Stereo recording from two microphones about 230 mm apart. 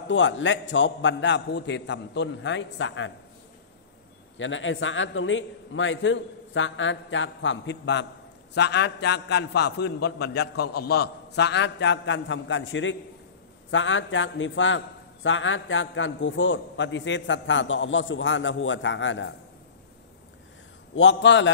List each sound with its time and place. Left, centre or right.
0.1 s a man's voice: left
4.4 s a man's voice: left
20.9 s a man's voice: left